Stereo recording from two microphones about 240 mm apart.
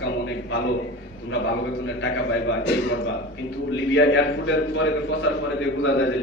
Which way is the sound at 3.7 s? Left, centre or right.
Left.